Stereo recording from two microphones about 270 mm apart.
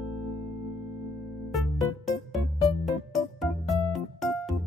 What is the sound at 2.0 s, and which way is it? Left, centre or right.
Music, centre.